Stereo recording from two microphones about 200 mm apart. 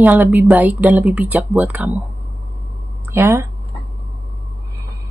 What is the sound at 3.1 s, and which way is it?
Speech, 15° right (ahead or behind).